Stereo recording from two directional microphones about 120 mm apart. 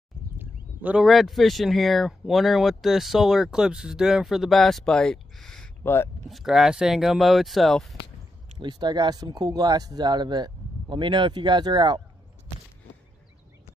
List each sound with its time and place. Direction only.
0.4 s a sound: 15° right (ahead or behind)
1.0 s speech: centre (ahead or behind)
8.5 s speech: 40° right (ahead or behind)